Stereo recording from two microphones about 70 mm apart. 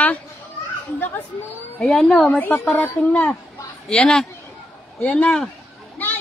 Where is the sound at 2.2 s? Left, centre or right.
Left.